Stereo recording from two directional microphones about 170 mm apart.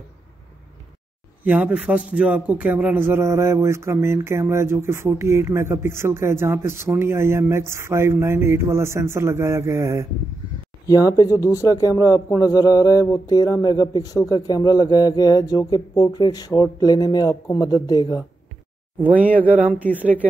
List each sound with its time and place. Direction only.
1.4 s a man's voice: 10° right (ahead or behind)
10.9 s speech: 20° left (ahead or behind)
18.9 s a man's voice: 10° right (ahead or behind)
19.7 s speech: 10° left (ahead or behind)